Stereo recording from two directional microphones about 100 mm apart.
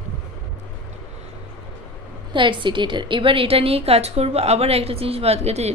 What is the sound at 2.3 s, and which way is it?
A woman's voice, 55° right (ahead or behind).